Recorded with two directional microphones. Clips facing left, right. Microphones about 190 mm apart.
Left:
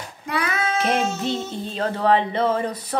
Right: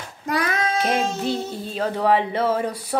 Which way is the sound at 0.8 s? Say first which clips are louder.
Left 2 dB; centre (ahead or behind).